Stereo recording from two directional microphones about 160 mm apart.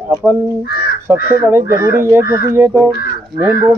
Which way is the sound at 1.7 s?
70° left (ahead or behind).